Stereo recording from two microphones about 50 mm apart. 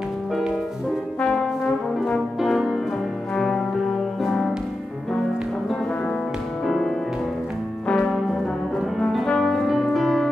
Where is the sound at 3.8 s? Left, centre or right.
Centre.